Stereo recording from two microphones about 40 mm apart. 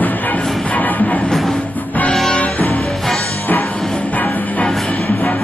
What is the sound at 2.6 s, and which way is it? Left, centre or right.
Music, left.